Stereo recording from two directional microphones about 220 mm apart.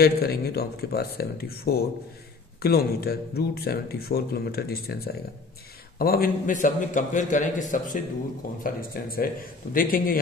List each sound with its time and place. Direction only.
0.0 s a man's voice: 45° left (ahead or behind)